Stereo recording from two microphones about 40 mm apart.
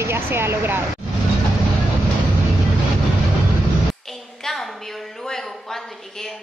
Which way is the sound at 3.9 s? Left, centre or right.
Centre.